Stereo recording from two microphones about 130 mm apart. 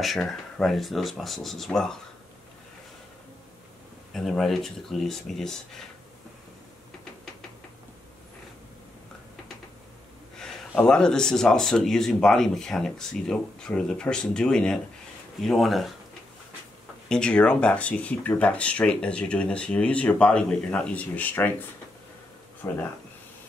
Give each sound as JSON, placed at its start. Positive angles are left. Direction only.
{"t": 0.0, "sound": "speech", "side_deg": 0}
{"t": 4.1, "sound": "speech", "side_deg": 0}
{"t": 10.3, "sound": "speech", "side_deg": 5}
{"t": 17.1, "sound": "speech", "side_deg": 5}
{"t": 22.6, "sound": "speech", "side_deg": 20}